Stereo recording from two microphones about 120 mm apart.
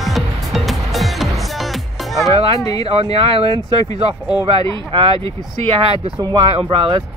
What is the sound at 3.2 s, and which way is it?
Speech, 50° right (ahead or behind).